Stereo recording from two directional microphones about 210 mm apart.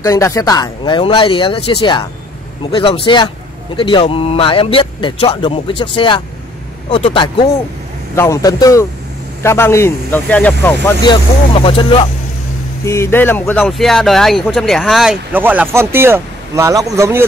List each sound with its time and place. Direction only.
0.0 s speech: 15° left (ahead or behind)
11.1 s speech: 25° left (ahead or behind)
12.8 s speech: 10° left (ahead or behind); by 17.3 s 15° right (ahead or behind)